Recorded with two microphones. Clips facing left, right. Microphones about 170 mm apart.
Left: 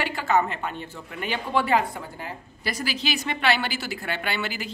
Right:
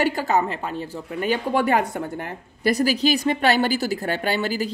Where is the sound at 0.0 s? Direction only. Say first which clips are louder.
Right 3 dB; 40° right (ahead or behind).